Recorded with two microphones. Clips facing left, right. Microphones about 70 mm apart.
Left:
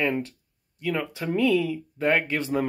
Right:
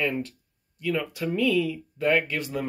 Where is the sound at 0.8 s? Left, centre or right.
Left.